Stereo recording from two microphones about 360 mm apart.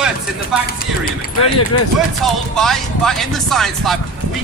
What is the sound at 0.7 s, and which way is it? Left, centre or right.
Speech, left.